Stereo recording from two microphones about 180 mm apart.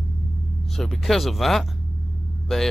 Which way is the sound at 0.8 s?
Centre (ahead or behind).